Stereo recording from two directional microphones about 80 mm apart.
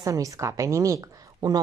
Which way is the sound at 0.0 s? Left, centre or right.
Right.